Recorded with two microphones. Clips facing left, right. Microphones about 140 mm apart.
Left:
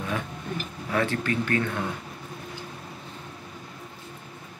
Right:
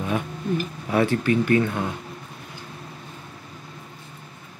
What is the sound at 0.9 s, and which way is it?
Speech, 15° right (ahead or behind).